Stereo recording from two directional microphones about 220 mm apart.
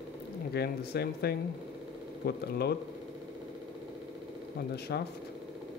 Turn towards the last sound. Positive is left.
turn(degrees=45)  # may be behind; listen again after turning